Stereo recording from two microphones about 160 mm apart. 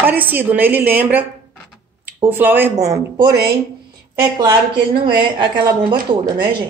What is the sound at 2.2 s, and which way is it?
A woman's voice, 15° right (ahead or behind).